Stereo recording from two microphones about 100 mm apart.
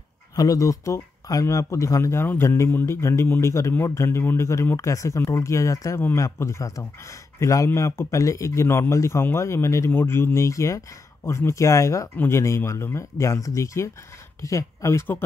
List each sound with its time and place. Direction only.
0.4 s a man's voice: 35° left (ahead or behind)